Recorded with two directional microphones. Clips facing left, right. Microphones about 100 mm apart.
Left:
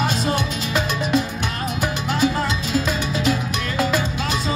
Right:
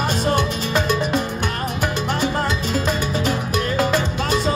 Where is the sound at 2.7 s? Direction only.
50° right (ahead or behind).